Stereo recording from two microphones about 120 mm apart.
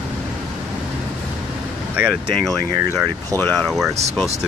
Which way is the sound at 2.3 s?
5° left (ahead or behind).